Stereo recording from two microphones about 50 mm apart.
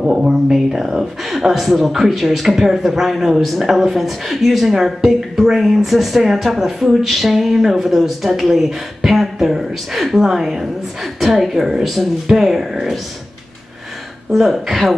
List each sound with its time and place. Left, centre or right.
0.0 s speech: centre
14.3 s speech: centre